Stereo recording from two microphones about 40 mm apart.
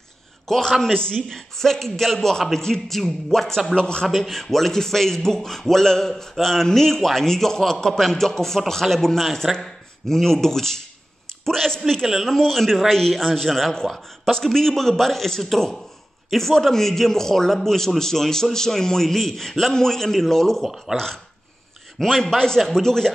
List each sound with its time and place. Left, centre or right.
0.5 s a man's voice: centre
1.3 s a man's voice: centre
3.7 s a man's voice: left
4.1 s a man's voice: centre